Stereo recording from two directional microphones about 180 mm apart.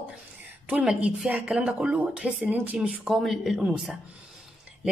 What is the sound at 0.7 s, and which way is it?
A woman's voice, 5° right (ahead or behind).